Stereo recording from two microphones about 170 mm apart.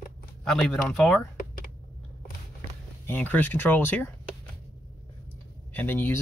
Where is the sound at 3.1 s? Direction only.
10° left (ahead or behind).